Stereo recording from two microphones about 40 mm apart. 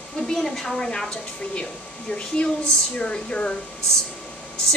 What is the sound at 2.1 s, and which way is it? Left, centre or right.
A woman's voice, left.